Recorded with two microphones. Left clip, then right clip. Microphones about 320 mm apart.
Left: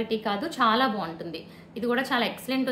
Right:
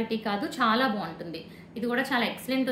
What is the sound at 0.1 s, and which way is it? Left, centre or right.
A woman's voice, centre.